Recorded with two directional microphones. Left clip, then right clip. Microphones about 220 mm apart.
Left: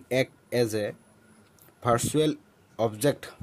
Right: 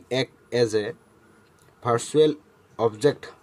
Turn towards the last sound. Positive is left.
turn(degrees=25)  # may be behind; listen again after turning